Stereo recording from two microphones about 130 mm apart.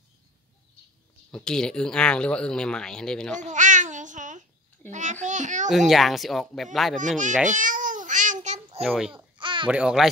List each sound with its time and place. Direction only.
1.3 s speech: 5° left (ahead or behind)
3.3 s babbling: 70° right (ahead or behind)
5.7 s speech: centre (ahead or behind)
7.4 s babbling: 85° right
8.8 s speech: centre (ahead or behind)
9.1 s babbling: 40° right (ahead or behind)
9.7 s speech: 5° right (ahead or behind)